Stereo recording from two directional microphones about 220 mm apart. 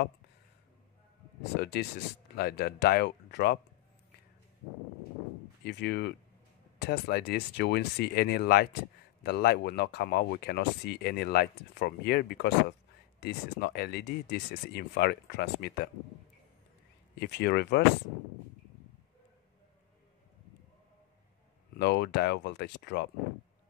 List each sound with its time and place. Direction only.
1.6 s speech: 50° left (ahead or behind)
5.6 s speech: 50° left (ahead or behind)
17.2 s speech: 50° left (ahead or behind)
21.7 s speech: 50° left (ahead or behind)